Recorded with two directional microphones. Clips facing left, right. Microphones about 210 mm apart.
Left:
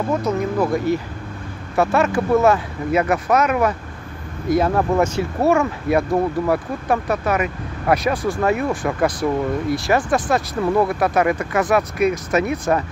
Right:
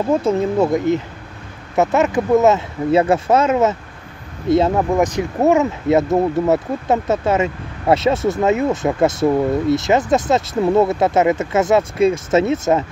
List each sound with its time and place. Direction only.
0.1 s speech: 25° right (ahead or behind)